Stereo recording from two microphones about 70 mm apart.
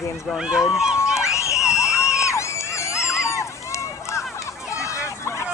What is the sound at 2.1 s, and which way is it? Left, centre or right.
Screaming, left.